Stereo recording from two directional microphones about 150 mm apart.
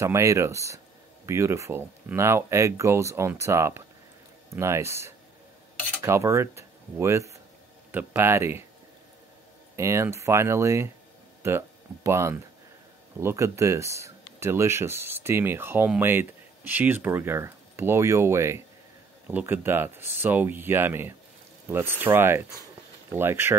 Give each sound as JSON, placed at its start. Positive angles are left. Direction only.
{"t": 0.0, "sound": "speech", "side_deg": -20}
{"t": 9.8, "sound": "speech", "side_deg": -20}